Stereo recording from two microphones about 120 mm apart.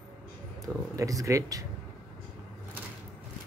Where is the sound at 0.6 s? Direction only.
30° right (ahead or behind).